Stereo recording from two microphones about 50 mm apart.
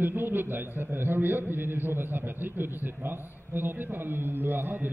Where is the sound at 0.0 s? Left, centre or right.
Right.